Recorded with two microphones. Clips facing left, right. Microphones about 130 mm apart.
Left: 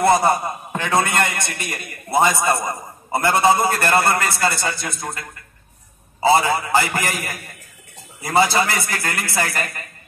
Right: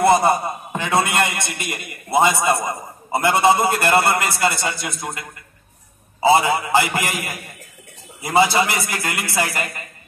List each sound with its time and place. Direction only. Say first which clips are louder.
0.0 s a man's voice: right 1 dB; 5° right (ahead or behind)
3.1 s a man's voice: right 1 dB; 20° right (ahead or behind)
3.3 s a man's voice: even; 5° right (ahead or behind)
3.6 s a man's voice: right 1 dB; 20° right (ahead or behind)
6.2 s a man's voice: right 1 dB; 20° right (ahead or behind)